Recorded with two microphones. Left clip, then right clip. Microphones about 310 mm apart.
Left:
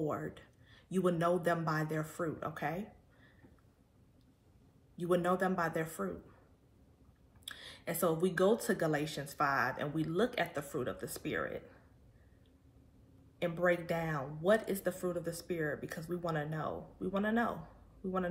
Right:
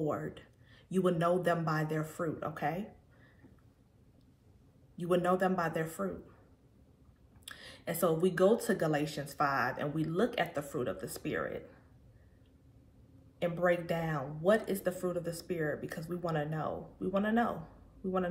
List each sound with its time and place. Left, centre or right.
0.0 s speech: centre
4.9 s speech: centre
7.4 s speech: centre
13.4 s speech: centre